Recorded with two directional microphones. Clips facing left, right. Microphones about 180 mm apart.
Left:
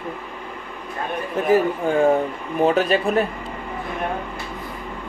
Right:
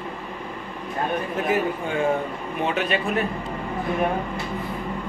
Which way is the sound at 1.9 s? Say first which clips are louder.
Left 6 dB; 40° left (ahead or behind).